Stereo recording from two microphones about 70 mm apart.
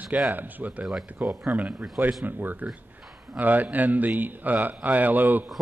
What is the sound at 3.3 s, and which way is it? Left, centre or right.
A man's voice, right.